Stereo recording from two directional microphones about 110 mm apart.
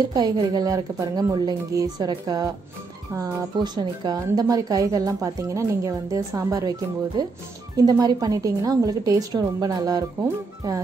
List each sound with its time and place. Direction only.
0.1 s a woman's voice: 35° right (ahead or behind)